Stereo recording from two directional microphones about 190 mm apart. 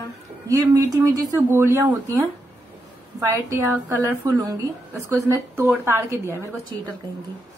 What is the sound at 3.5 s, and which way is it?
A woman's voice, 15° right (ahead or behind).